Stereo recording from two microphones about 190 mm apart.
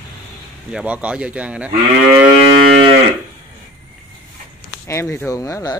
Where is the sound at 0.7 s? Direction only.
5° right (ahead or behind).